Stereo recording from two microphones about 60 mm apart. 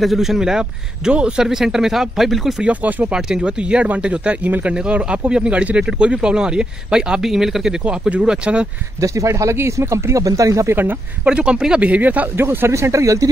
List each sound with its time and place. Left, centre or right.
0.0 s speech: centre
2.6 s speech: right
3.1 s speech: centre; by 4.7 s right
4.7 s speech: centre
7.8 s speech: centre
9.0 s speech: right
10.2 s speech: right
10.7 s speech: right
11.2 s speech: centre
12.4 s speech: right